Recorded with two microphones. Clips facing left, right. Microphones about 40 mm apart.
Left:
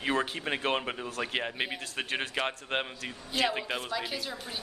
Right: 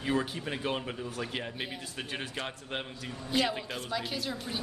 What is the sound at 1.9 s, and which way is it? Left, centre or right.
Speech, left.